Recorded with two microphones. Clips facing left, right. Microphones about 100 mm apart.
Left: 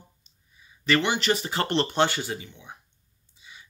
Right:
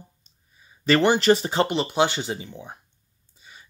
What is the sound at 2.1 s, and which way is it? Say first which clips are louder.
Speech: right 2 dB; 20° right (ahead or behind).